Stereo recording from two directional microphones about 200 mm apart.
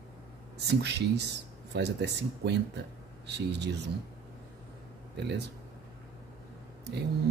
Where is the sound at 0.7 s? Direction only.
55° right (ahead or behind).